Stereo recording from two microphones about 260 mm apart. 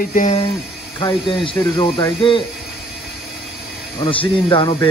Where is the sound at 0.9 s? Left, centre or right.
Centre.